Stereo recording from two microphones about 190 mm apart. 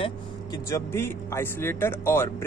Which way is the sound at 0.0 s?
20° left (ahead or behind).